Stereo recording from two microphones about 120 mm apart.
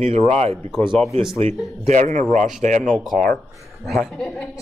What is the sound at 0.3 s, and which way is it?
Speech, 60° right (ahead or behind).